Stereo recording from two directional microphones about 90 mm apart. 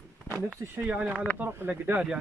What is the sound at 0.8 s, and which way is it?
Speech, 20° right (ahead or behind).